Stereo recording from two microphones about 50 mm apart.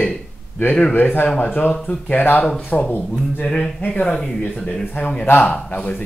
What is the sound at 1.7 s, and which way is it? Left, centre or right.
Speech, centre.